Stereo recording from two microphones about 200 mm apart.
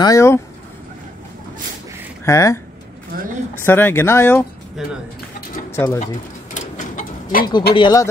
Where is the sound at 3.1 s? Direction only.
45° right (ahead or behind).